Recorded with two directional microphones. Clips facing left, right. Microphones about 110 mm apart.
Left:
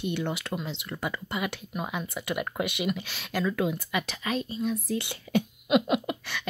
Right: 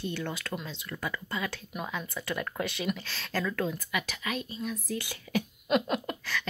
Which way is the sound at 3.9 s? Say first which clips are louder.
Left 4 dB; 30° left (ahead or behind).